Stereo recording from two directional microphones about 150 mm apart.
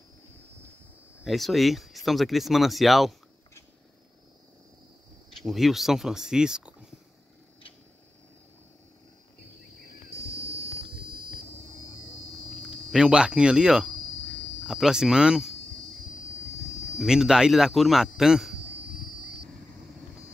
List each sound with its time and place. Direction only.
1.2 s speech: centre (ahead or behind)
5.4 s speech: centre (ahead or behind)
12.6 s speech: 5° right (ahead or behind)
16.7 s a sound: 50° left (ahead or behind)
17.0 s speech: 5° right (ahead or behind)